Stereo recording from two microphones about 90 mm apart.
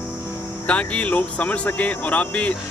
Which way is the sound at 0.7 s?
15° left (ahead or behind).